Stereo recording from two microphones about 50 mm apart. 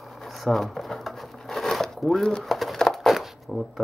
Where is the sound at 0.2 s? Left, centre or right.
Centre.